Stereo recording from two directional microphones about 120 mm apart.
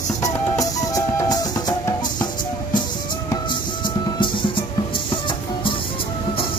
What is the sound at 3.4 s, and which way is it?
Music, 40° left (ahead or behind).